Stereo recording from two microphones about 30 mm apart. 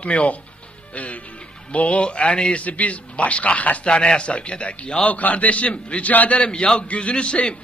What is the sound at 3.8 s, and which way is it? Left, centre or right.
Speech, left.